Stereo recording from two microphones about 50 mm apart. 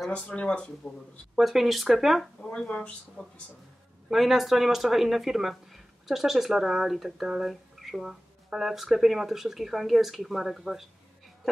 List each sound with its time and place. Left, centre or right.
0.1 s speech: left
1.3 s speech: centre
2.4 s speech: centre
4.1 s speech: centre